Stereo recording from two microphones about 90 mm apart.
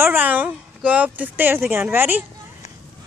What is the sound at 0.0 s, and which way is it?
Speech, 20° right (ahead or behind).